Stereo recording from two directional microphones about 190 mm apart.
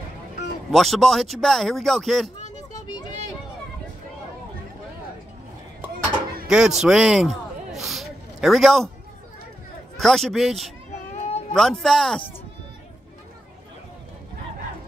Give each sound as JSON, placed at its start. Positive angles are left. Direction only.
{"t": 0.7, "sound": "speech", "side_deg": 0}
{"t": 6.4, "sound": "speech", "side_deg": 0}
{"t": 6.8, "sound": "a sound", "side_deg": 0}
{"t": 9.9, "sound": "speech", "side_deg": 0}
{"t": 11.1, "sound": "cat", "side_deg": 35}
{"t": 11.5, "sound": "speech", "side_deg": 0}